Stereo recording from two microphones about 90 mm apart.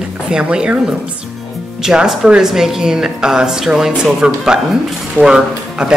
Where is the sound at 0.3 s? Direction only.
10° right (ahead or behind).